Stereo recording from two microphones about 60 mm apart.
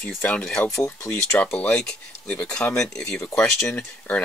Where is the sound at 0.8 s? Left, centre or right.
Left.